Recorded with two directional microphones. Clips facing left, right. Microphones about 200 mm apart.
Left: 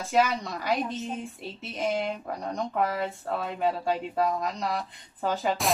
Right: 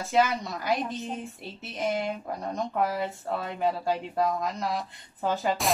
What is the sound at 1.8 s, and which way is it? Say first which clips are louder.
Speech: even; centre (ahead or behind).